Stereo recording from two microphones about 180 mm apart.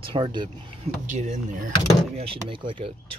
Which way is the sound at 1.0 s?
40° right (ahead or behind).